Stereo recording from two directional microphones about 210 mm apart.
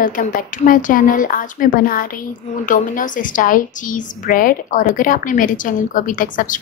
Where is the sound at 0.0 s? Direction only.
40° left (ahead or behind).